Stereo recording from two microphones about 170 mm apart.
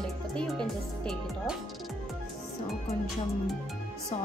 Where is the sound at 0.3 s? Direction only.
5° left (ahead or behind).